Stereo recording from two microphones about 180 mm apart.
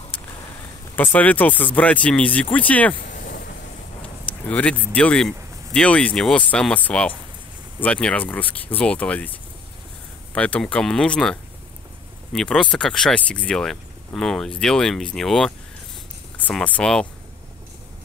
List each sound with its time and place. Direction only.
0.9 s speech: 10° left (ahead or behind)
3.0 s a sound: 50° left (ahead or behind)
4.5 s speech: 10° left (ahead or behind)